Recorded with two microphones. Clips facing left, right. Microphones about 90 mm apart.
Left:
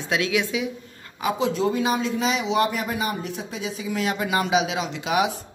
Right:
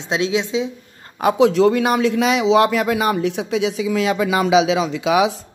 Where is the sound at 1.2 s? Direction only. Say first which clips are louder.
Right 9 dB; 75° right (ahead or behind).